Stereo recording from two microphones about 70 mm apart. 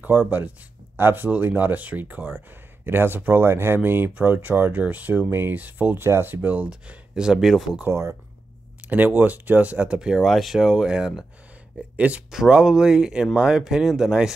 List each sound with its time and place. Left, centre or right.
0.0 s speech: right
6.0 s speech: right
6.7 s speech: centre
7.9 s speech: right
8.8 s speech: right; by 11.2 s centre
11.7 s speech: centre